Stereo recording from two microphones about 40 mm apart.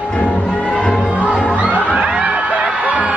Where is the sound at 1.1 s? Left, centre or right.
Right.